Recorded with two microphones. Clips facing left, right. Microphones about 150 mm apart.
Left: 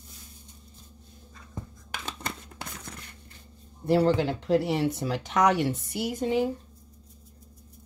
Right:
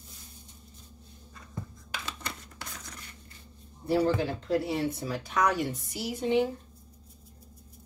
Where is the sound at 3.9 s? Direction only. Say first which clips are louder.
Left 3 dB; 80° left.